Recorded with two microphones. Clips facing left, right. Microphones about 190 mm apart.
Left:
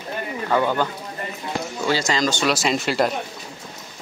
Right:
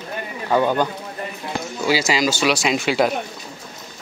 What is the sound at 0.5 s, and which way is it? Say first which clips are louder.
Speech: right 3 dB; 15° right (ahead or behind).